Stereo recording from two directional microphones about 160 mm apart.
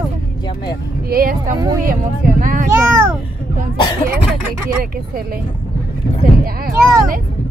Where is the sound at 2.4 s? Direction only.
60° right (ahead or behind).